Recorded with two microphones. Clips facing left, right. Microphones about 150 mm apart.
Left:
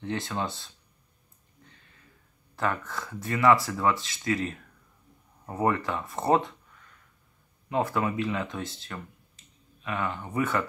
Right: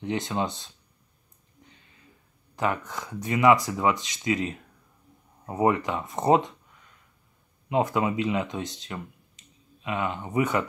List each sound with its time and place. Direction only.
0.0 s speech: 15° right (ahead or behind)
2.5 s speech: 15° right (ahead or behind)